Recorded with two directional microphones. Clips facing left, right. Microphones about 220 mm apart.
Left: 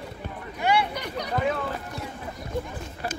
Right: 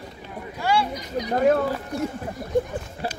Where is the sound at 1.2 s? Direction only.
45° right (ahead or behind).